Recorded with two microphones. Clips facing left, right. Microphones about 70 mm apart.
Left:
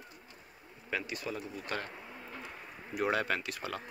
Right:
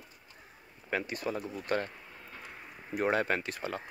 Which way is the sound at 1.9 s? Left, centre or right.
Centre.